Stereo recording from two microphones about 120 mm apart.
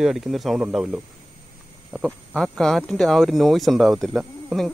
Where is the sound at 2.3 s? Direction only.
5° left (ahead or behind).